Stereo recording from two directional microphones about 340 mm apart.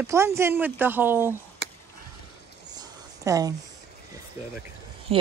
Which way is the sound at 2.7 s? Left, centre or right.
Centre.